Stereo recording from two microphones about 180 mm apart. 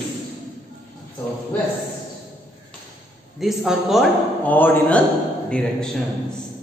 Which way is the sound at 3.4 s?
5° right (ahead or behind).